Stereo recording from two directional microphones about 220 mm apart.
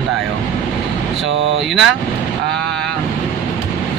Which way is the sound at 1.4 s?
55° right (ahead or behind).